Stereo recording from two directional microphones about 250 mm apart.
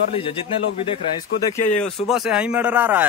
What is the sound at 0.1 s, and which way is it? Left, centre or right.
Speech, left.